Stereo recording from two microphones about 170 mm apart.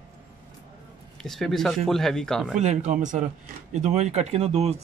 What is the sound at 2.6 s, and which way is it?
Speech, 45° right (ahead or behind).